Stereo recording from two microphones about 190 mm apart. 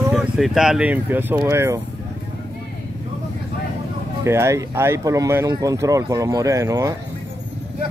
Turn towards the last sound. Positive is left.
turn(degrees=-15)  # may be behind; listen again after turning